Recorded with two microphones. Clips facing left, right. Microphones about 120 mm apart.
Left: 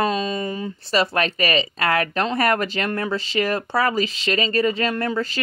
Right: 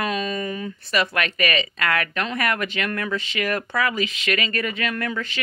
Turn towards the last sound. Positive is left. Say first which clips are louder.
# left 4 dB
turn(degrees=30)  # may be behind; listen again after turning